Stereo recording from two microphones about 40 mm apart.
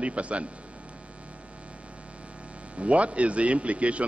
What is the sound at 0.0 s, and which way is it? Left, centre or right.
Speech, right.